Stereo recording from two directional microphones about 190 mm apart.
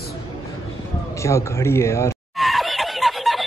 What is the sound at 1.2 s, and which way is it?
Speech, 15° left (ahead or behind).